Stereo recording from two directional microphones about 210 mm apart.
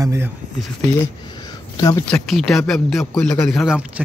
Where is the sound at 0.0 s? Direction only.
15° right (ahead or behind).